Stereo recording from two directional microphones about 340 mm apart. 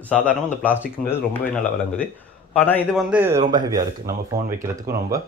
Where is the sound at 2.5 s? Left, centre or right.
Centre.